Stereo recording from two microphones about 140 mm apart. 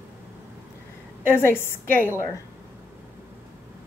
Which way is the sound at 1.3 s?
15° left (ahead or behind).